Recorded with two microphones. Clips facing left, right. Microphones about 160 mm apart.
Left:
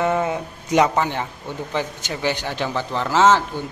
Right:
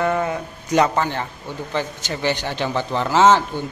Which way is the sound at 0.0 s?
15° left (ahead or behind).